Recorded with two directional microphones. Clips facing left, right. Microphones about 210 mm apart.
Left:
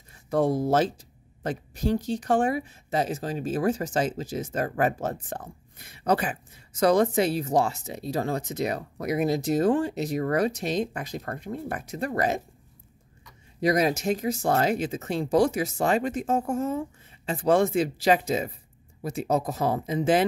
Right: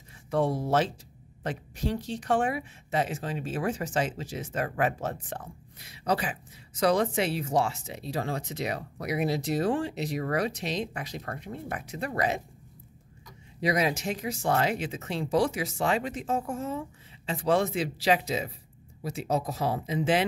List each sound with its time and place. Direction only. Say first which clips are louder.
0.3 s speech: left 3 dB; 45° left (ahead or behind)
13.6 s speech: left 4 dB; 45° left (ahead or behind)